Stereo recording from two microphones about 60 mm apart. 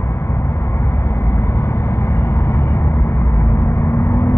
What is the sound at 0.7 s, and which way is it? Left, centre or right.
Vehicle, left.